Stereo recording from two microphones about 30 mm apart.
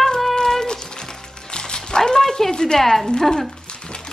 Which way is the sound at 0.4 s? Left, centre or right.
Centre.